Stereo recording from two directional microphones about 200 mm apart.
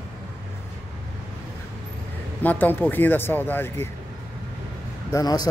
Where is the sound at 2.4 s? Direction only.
10° left (ahead or behind).